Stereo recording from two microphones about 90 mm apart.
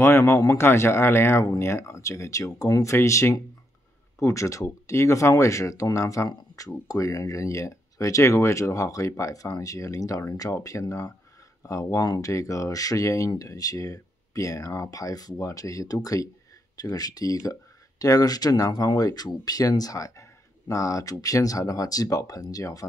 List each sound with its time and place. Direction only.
0.0 s speech: 30° left (ahead or behind)